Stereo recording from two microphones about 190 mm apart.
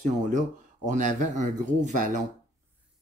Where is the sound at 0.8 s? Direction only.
40° right (ahead or behind).